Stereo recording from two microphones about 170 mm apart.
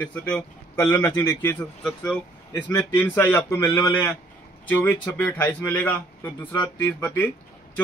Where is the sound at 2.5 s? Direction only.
20° left (ahead or behind).